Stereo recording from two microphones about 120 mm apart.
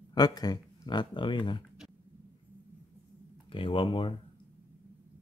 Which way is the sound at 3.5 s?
45° left (ahead or behind).